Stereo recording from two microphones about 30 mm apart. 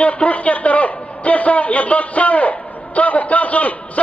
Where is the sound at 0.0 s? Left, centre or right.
Left.